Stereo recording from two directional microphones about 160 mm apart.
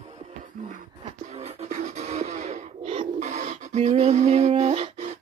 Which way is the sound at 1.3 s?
40° right (ahead or behind).